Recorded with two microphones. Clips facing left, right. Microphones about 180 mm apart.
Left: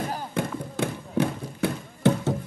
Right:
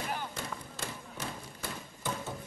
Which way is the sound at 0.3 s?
60° left (ahead or behind).